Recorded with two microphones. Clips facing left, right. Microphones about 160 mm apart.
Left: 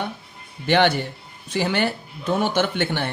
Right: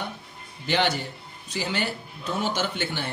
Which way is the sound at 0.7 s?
55° left (ahead or behind).